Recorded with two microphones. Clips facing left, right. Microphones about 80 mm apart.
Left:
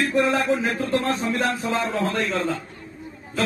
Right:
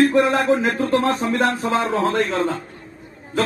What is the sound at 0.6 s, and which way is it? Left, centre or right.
A man's voice, right.